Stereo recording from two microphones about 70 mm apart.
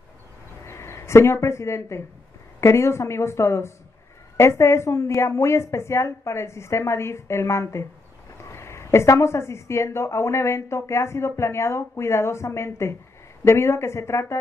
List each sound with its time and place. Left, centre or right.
0.7 s a woman's voice: left